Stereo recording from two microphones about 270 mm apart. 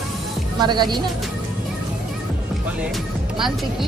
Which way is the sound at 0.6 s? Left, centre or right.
Centre.